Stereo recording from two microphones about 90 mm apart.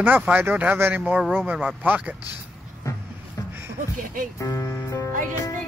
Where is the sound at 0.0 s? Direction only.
20° right (ahead or behind).